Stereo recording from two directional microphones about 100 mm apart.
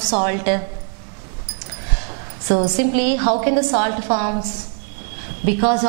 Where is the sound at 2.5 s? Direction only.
10° right (ahead or behind).